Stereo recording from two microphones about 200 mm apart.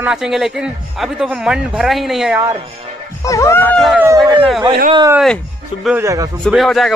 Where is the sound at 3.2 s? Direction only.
15° left (ahead or behind).